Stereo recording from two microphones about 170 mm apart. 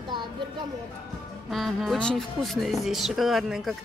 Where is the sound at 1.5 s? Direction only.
Centre (ahead or behind).